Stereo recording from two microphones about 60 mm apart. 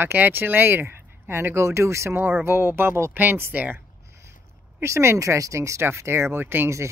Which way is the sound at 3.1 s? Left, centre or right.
Right.